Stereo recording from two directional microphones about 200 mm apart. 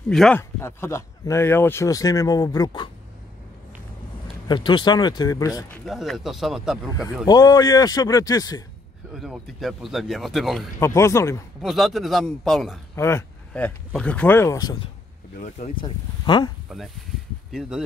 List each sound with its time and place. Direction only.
0.1 s speech: centre (ahead or behind)
0.4 s speech: 15° left (ahead or behind)
4.5 s speech: 25° left (ahead or behind)
5.7 s speech: centre (ahead or behind)
7.2 s speech: 20° left (ahead or behind)
9.1 s speech: centre (ahead or behind)
10.8 s speech: 15° left (ahead or behind)
11.6 s speech: centre (ahead or behind)
12.9 s speech: 15° left (ahead or behind)
15.3 s speech: 35° left (ahead or behind)
16.6 s speech: centre (ahead or behind)